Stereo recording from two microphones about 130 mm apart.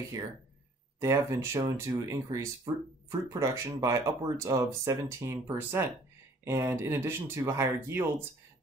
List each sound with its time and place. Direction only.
1.0 s speech: 25° right (ahead or behind)